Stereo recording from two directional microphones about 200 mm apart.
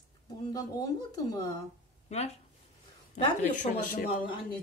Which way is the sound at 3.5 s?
40° left (ahead or behind).